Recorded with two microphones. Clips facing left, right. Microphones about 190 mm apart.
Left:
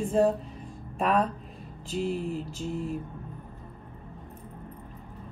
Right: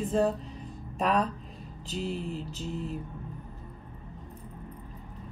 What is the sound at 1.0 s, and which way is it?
A woman's voice, centre (ahead or behind).